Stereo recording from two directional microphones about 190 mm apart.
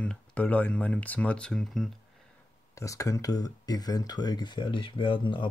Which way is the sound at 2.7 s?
15° left (ahead or behind).